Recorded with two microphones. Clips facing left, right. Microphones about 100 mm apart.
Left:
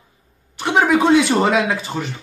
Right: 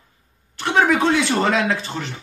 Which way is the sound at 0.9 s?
15° left (ahead or behind).